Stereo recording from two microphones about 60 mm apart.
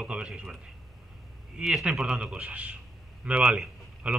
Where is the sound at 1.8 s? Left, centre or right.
Centre.